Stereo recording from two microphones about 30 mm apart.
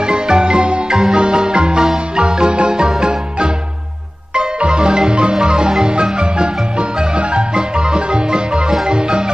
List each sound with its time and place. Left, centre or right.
0.0 s music: right
4.6 s marimba: right
7.2 s music: right
8.8 s marimba: right